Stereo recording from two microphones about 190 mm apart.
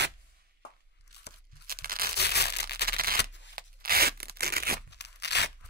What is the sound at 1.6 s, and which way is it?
Tearing, 50° right (ahead or behind).